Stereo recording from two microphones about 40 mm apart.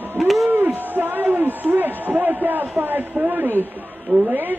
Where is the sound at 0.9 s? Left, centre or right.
Right.